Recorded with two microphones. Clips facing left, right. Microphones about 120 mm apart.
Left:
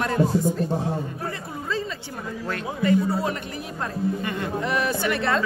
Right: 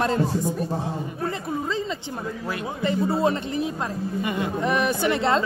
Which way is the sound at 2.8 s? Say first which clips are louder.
Even; 25° right (ahead or behind).